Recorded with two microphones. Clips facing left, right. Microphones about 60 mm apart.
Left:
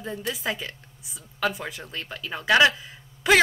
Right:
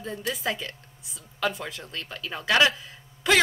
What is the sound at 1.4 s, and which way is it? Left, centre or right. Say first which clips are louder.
Speech: left 1 dB; centre.